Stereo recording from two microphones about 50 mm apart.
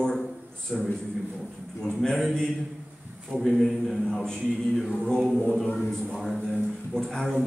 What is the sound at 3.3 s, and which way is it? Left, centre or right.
Speech, centre.